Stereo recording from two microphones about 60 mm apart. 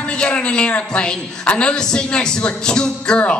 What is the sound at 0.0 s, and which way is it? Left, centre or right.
A woman's voice, centre.